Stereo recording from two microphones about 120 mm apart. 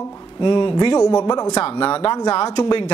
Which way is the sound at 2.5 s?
35° left (ahead or behind).